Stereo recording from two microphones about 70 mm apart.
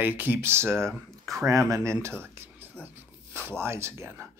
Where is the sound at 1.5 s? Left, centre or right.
Right.